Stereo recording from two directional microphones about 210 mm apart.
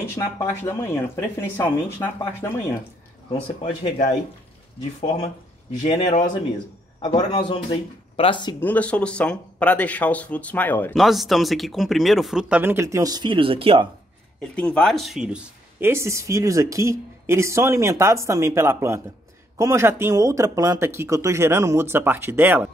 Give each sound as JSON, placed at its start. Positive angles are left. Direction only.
{"t": 0.0, "sound": "speech", "side_deg": 10}
{"t": 3.3, "sound": "speech", "side_deg": 25}
{"t": 5.0, "sound": "speech", "side_deg": 30}
{"t": 7.0, "sound": "speech", "side_deg": 20}
{"t": 8.5, "sound": "speech", "side_deg": 5}
{"t": 14.4, "sound": "speech", "side_deg": 5}